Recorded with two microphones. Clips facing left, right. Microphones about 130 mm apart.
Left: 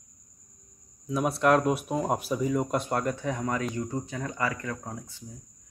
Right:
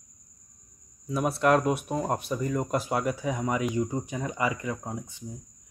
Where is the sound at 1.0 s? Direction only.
Centre (ahead or behind).